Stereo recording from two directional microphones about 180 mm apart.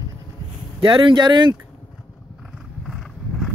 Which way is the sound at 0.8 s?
25° right (ahead or behind).